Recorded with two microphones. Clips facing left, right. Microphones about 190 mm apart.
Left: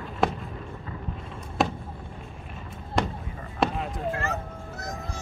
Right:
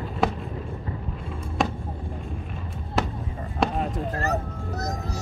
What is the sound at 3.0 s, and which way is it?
Fireworks, 5° right (ahead or behind).